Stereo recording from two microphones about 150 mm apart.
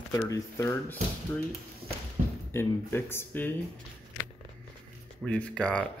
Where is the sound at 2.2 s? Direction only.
50° right (ahead or behind).